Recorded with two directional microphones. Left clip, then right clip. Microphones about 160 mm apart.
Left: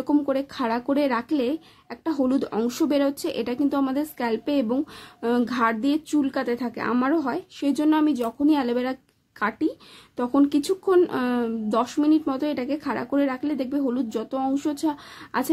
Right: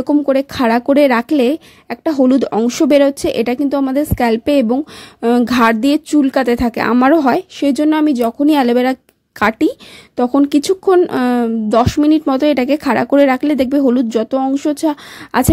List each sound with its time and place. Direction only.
0.0 s speech: 40° right (ahead or behind)